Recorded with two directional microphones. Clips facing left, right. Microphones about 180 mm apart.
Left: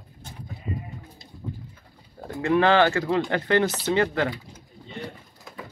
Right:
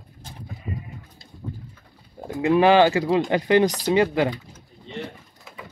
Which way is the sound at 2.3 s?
15° right (ahead or behind).